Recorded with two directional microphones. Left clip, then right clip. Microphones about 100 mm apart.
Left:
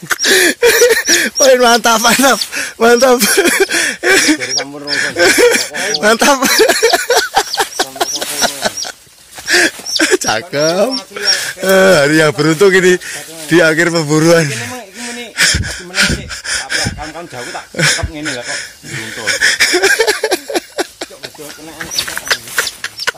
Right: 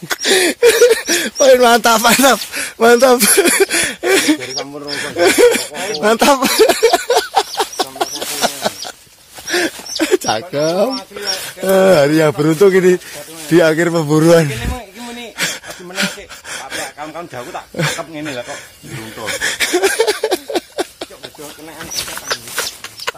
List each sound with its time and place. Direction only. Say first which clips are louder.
0.1 s a sound: left 3 dB; centre (ahead or behind)
4.9 s speech: left 3 dB; centre (ahead or behind)
5.9 s a sound: left 1 dB; centre (ahead or behind)
9.9 s speech: left 2 dB; 5° right (ahead or behind)
11.1 s speech: left 7 dB; 10° left (ahead or behind)
11.7 s a man's voice: left 2 dB; centre (ahead or behind); by 14.5 s 35° right (ahead or behind)
15.3 s gasp: left 9 dB; 15° right (ahead or behind)
17.7 s speech: left 6 dB; 10° right (ahead or behind)
19.2 s a sound: left 7 dB; 20° right (ahead or behind); by 21.1 s centre (ahead or behind)
22.1 s chicken: left 7 dB; 5° left (ahead or behind)